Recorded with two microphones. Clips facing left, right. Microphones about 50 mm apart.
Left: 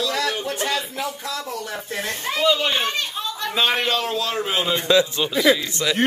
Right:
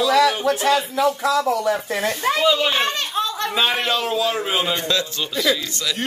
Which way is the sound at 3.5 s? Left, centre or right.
Centre.